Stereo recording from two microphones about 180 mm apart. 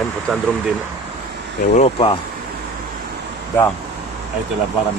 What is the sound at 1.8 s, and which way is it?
Speech, 30° left (ahead or behind).